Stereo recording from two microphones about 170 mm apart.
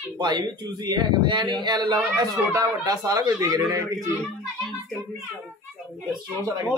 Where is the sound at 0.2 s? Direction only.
25° right (ahead or behind).